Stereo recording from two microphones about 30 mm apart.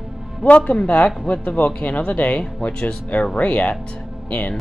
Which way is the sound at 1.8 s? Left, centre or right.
Left.